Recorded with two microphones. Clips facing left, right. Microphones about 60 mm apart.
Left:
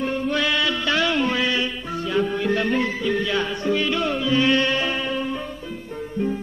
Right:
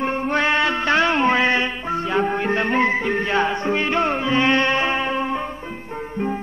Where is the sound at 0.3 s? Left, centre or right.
Right.